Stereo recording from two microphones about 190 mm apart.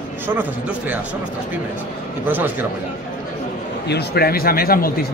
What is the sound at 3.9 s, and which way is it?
Speech, 55° left (ahead or behind).